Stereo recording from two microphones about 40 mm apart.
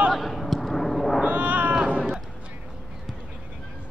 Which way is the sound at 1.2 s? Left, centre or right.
Right.